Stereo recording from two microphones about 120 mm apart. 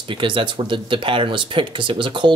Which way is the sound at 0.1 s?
45° right (ahead or behind).